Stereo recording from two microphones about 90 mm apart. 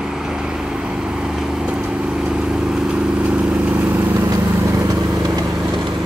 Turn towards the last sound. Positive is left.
turn(degrees=-40)  # may be behind; listen again after turning